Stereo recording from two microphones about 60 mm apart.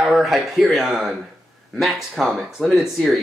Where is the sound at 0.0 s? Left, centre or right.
Centre.